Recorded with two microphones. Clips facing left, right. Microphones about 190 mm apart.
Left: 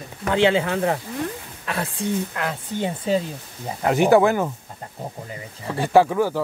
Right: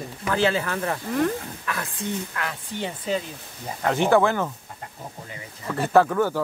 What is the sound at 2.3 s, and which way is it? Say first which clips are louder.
Speech: left 5 dB; 25° left (ahead or behind).